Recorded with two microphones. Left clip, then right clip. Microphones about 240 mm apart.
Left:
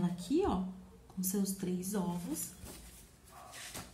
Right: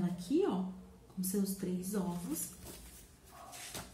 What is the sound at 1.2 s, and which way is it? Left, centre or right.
Speech, centre.